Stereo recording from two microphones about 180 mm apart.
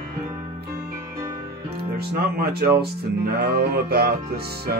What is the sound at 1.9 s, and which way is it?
Music, 60° right (ahead or behind).